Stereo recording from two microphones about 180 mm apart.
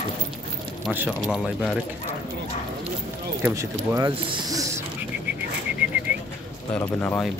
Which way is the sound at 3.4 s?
15° right (ahead or behind).